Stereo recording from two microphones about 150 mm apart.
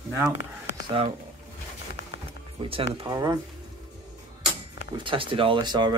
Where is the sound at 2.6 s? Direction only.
35° right (ahead or behind).